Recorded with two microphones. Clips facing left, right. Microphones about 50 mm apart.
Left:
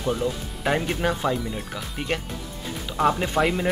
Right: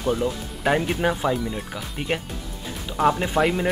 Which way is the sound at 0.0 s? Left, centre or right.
Centre.